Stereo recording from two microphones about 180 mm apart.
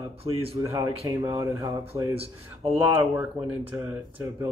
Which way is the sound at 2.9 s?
10° right (ahead or behind).